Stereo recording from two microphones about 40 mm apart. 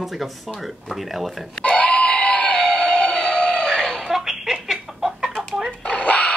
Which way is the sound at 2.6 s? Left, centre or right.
Centre.